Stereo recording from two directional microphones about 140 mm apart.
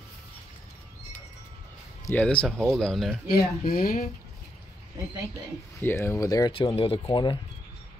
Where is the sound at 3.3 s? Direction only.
90° left.